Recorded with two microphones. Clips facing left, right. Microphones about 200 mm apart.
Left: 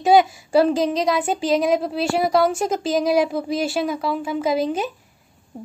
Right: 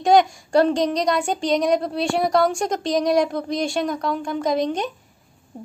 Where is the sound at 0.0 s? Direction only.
5° left (ahead or behind).